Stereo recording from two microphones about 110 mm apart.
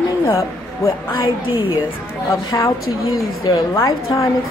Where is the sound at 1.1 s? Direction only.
50° left (ahead or behind).